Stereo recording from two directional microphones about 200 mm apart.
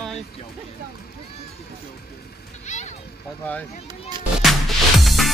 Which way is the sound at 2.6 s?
35° left (ahead or behind).